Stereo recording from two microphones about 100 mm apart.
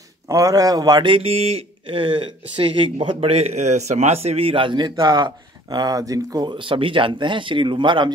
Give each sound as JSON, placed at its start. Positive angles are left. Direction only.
{"t": 0.3, "sound": "speech", "side_deg": -35}
{"t": 1.1, "sound": "speech", "side_deg": -75}
{"t": 6.5, "sound": "speech", "side_deg": -60}